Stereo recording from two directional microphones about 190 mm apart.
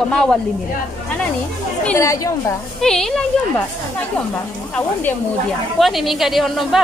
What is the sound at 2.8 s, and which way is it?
Speech, 5° left (ahead or behind).